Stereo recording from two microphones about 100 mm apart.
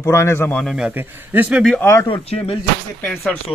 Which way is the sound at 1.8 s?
25° left (ahead or behind).